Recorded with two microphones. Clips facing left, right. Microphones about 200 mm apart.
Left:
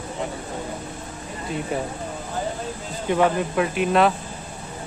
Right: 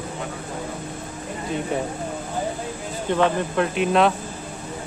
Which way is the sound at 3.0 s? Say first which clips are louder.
Left 1 dB; 10° left (ahead or behind).